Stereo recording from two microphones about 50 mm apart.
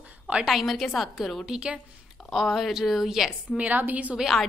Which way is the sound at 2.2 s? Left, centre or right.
Centre.